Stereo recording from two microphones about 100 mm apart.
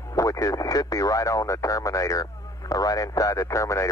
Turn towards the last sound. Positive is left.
turn(degrees=30)  # may be behind; listen again after turning